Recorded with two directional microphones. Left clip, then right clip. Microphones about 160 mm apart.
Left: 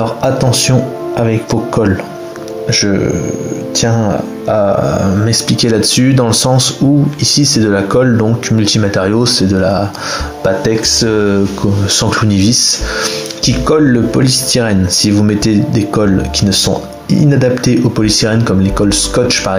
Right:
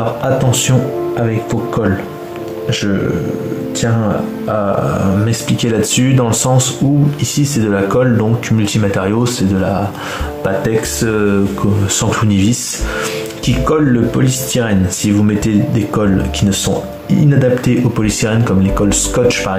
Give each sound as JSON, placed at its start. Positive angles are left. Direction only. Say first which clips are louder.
{"t": 0.2, "sound": "speech", "louder": "left 4 dB", "side_deg": 30}
{"t": 4.9, "sound": "speech", "louder": "left 3 dB", "side_deg": 25}